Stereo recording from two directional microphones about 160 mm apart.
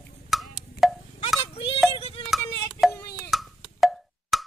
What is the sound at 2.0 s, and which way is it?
Music, 35° left (ahead or behind).